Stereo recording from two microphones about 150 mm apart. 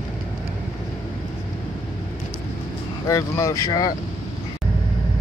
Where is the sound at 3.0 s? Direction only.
20° left (ahead or behind).